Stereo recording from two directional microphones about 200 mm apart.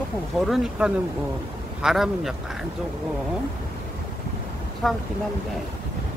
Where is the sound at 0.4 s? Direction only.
5° right (ahead or behind).